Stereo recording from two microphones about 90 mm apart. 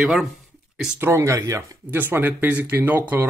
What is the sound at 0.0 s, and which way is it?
Speech, centre (ahead or behind).